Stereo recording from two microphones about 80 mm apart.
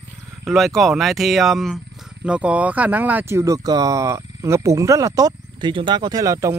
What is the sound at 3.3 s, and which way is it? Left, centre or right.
Speech, right.